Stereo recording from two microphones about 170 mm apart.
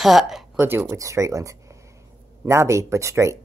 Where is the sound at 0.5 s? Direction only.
15° right (ahead or behind).